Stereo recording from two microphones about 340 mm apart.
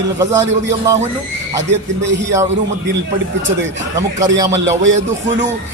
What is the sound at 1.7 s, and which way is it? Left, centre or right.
Speech, right.